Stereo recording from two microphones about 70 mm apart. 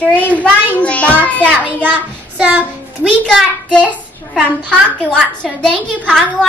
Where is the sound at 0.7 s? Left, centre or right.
Left.